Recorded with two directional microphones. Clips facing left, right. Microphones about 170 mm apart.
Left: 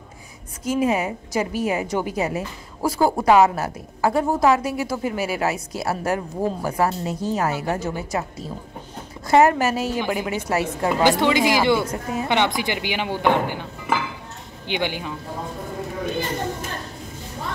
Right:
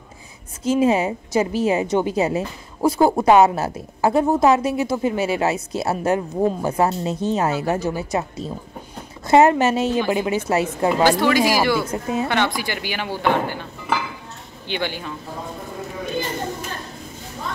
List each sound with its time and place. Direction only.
0.7 s a woman's voice: 25° right (ahead or behind)
11.1 s speech: 20° left (ahead or behind)
11.9 s a woman's voice: 20° right (ahead or behind)
12.3 s speech: 20° left (ahead or behind)
14.7 s speech: 15° left (ahead or behind)